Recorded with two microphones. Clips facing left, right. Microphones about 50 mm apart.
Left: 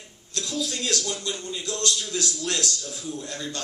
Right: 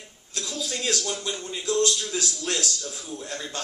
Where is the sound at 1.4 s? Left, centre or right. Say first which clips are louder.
Left 1 dB; centre.